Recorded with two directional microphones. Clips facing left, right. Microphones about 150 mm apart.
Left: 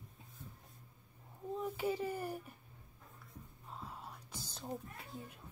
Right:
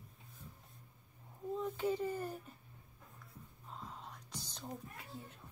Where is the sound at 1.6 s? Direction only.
10° left (ahead or behind).